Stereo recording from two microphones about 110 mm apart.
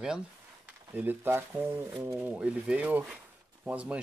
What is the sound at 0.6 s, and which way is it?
Speech, 15° right (ahead or behind).